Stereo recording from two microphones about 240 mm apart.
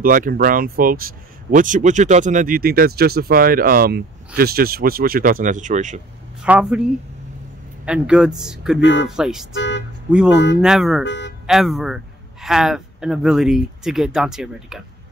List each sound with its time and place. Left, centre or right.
0.0 s speech: right
6.4 s speech: centre
9.6 s a sound: left
10.3 s speech: left
10.6 s speech: centre
11.1 s a sound: left
11.4 s a man's voice: centre